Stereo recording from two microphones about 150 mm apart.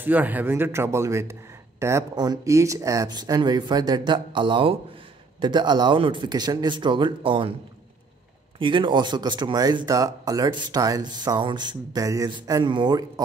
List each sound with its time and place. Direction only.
0.0 s speech: 10° right (ahead or behind); by 7.5 s 35° right (ahead or behind)
8.5 s speech: 35° right (ahead or behind)